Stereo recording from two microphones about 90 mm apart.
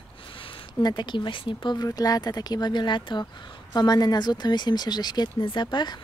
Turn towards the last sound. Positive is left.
turn(degrees=55)  # may be behind; listen again after turning